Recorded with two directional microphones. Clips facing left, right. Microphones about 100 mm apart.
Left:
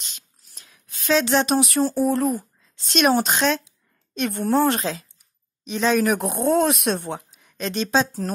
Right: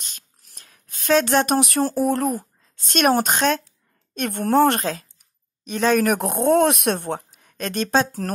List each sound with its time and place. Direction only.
0.5 s speech: 45° right (ahead or behind)
7.2 s speech: 45° right (ahead or behind)